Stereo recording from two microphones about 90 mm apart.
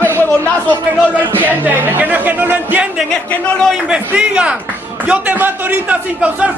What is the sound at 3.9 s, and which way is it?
A man's voice, 10° right (ahead or behind).